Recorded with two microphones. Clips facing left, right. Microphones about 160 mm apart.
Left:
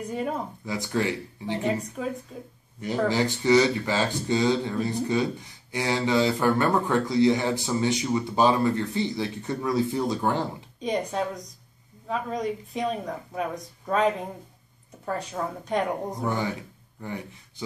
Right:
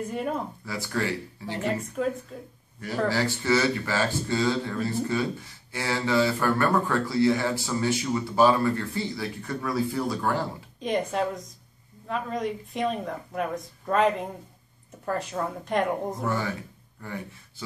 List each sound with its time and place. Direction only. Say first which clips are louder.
0.7 s speech: left 3 dB; 20° left (ahead or behind)
2.0 s a woman's voice: right 4 dB; 5° left (ahead or behind)
2.8 s speech: left 2 dB; 20° left (ahead or behind)
10.8 s a woman's voice: right 1 dB; centre (ahead or behind)
16.3 s speech: left 3 dB; 20° left (ahead or behind)